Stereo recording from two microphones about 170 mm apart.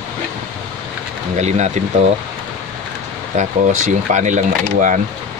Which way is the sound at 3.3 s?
45° right (ahead or behind).